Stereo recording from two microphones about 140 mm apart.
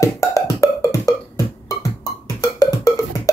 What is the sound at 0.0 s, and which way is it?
Music, 20° left (ahead or behind).